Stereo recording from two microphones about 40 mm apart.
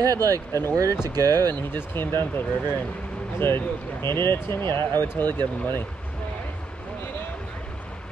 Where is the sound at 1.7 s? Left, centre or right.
Left.